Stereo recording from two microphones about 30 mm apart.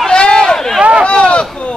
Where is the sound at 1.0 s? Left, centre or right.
Left.